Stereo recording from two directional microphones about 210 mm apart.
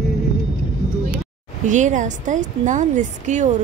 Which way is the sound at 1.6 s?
35° right (ahead or behind).